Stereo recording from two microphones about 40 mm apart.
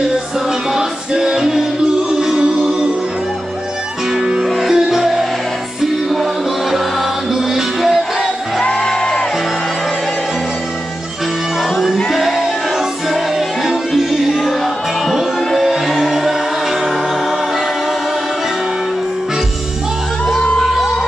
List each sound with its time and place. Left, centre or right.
0.7 s music: centre
4.2 s music: centre
4.7 s music: centre
7.5 s music: centre
12.1 s music: centre
13.7 s music: centre